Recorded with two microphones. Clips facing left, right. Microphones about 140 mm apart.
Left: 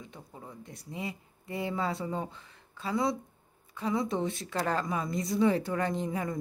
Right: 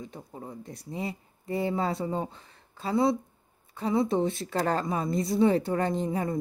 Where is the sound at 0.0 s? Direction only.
35° right (ahead or behind).